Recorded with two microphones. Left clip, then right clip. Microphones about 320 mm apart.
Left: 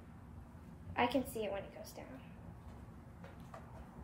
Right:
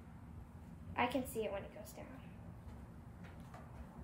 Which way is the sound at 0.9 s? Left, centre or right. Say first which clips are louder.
Left 2 dB; centre.